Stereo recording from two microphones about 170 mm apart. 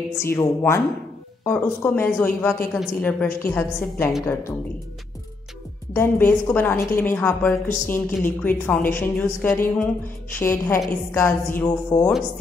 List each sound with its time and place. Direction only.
0.2 s a woman's voice: 15° left (ahead or behind)
5.9 s a woman's voice: 10° left (ahead or behind)